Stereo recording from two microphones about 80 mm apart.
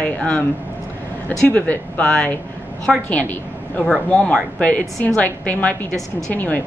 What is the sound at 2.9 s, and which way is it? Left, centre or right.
Speech, centre.